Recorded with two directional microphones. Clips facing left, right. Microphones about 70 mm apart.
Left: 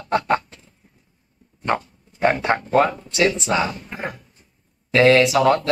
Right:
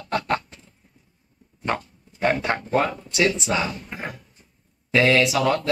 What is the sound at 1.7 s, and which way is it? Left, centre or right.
Dog, left.